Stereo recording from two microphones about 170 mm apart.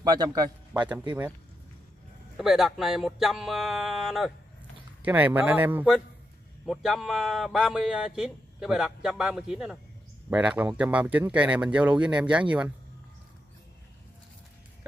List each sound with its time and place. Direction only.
0.0 s speech: 25° right (ahead or behind)
2.3 s speech: centre (ahead or behind)